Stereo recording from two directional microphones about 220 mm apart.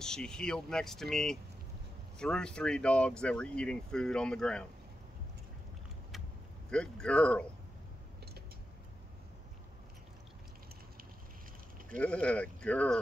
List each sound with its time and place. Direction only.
0.0 s speech: 5° left (ahead or behind)
6.7 s speech: 5° left (ahead or behind)
12.0 s speech: 5° left (ahead or behind)